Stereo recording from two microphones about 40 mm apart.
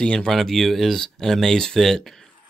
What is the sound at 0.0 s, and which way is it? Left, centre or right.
Speech, left.